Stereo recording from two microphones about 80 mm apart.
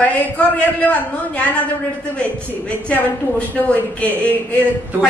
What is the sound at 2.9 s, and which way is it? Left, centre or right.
Speech, centre.